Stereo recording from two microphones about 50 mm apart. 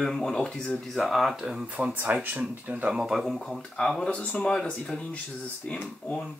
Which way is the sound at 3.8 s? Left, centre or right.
Left.